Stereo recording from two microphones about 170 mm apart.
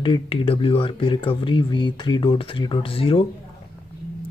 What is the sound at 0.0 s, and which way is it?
Speech, 30° left (ahead or behind).